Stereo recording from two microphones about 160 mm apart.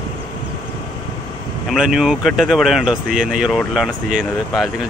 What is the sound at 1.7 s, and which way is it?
Speech, 5° right (ahead or behind).